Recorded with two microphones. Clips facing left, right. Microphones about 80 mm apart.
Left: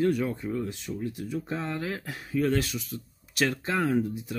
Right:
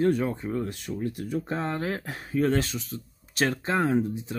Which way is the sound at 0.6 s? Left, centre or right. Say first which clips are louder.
Right 2 dB; right.